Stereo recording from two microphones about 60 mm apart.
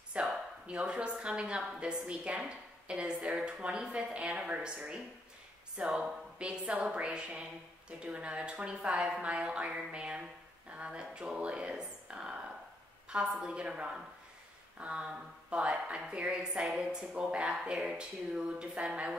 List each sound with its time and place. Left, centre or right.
0.2 s a sound: centre
0.7 s a woman's voice: centre
13.4 s a woman's voice: centre